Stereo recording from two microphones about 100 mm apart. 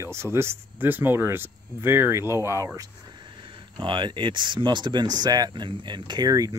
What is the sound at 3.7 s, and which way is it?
Speech, 55° right (ahead or behind).